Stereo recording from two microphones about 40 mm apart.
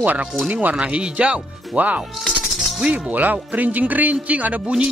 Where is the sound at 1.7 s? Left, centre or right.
Right.